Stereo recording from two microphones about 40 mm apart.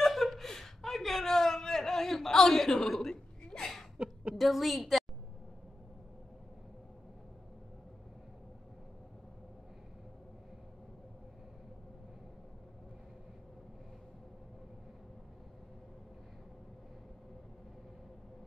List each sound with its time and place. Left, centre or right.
0.0 s chuckle: centre
4.0 s a sound: right
4.4 s a woman's voice: centre